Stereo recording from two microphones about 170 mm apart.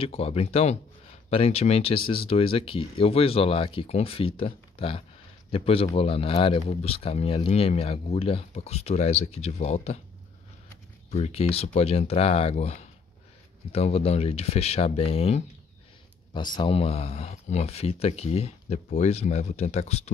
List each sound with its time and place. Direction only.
0.0 s speech: 35° left (ahead or behind)
11.1 s speech: 35° left (ahead or behind)